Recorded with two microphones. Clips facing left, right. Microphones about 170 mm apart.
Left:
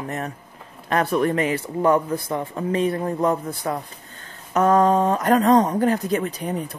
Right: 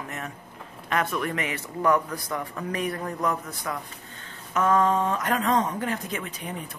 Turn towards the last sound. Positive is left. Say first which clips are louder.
# left 9 dB
turn(degrees=35)  # may be behind; listen again after turning